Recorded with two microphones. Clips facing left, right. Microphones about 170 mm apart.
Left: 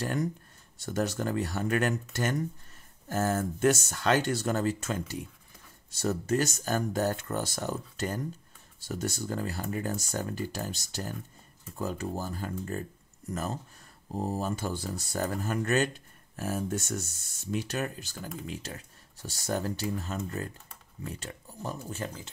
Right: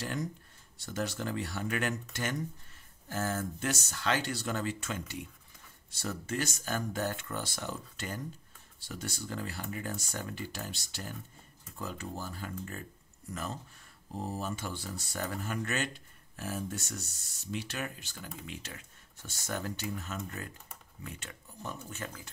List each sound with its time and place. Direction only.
0.0 s speech: 50° left (ahead or behind)
3.1 s speech: 45° left (ahead or behind); by 22.3 s 25° left (ahead or behind)